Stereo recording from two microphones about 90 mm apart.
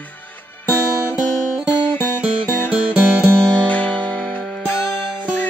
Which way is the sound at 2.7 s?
10° right (ahead or behind).